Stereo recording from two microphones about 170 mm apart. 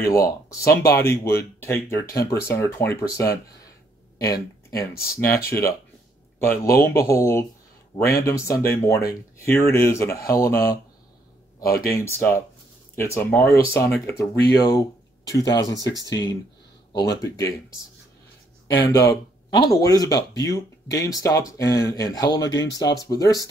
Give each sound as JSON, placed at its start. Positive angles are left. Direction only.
{"t": 0.0, "sound": "speech", "side_deg": 20}
{"t": 4.2, "sound": "a sound", "side_deg": 20}
{"t": 4.9, "sound": "speech", "side_deg": 65}
{"t": 5.5, "sound": "speech", "side_deg": 15}
{"t": 11.6, "sound": "speech", "side_deg": 60}
{"t": 12.0, "sound": "speech", "side_deg": 15}
{"t": 16.9, "sound": "speech", "side_deg": 20}
{"t": 18.9, "sound": "speech", "side_deg": 20}